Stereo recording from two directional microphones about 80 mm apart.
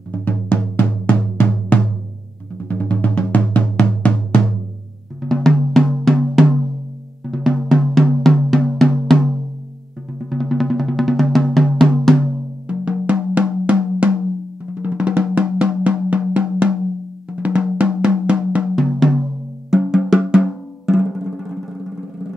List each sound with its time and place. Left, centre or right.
0.1 s music: left
2.7 s drum: centre
5.2 s music: centre
10.3 s music: centre
12.6 s drum: centre
17.3 s music: centre
18.8 s music: centre